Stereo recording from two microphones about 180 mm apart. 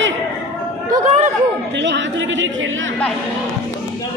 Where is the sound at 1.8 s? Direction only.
85° right.